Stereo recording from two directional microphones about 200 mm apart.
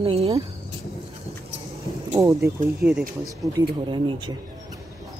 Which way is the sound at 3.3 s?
20° right (ahead or behind).